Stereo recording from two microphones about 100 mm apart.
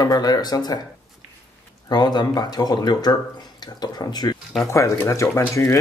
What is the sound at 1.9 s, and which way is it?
Speech, 45° left (ahead or behind).